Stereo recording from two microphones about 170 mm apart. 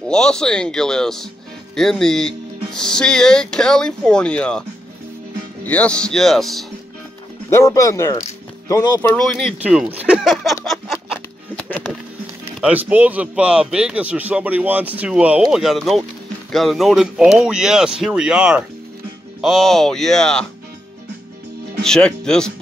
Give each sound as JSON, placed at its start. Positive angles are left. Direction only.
{"t": 0.1, "sound": "speech", "side_deg": 5}
{"t": 5.7, "sound": "speech", "side_deg": 5}
{"t": 7.4, "sound": "speech", "side_deg": 15}
{"t": 9.6, "sound": "a man's voice", "side_deg": -5}
{"t": 10.6, "sound": "a sound", "side_deg": 0}
{"t": 12.5, "sound": "a man's voice", "side_deg": -5}
{"t": 21.8, "sound": "speech", "side_deg": 5}